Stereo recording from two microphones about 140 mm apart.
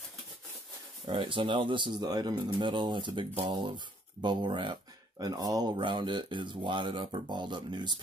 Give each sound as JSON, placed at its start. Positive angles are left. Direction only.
{"t": 1.0, "sound": "speech", "side_deg": -35}